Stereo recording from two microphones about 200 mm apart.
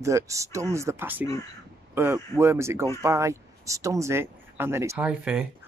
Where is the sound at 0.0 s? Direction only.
15° right (ahead or behind).